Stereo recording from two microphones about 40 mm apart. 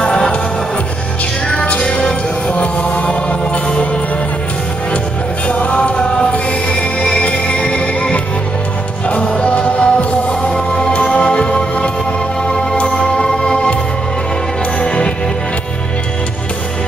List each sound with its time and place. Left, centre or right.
0.0 s music: left
1.5 s music: left
1.8 s music: centre
2.5 s music: left
5.5 s music: left
7.2 s music: left
10.5 s music: centre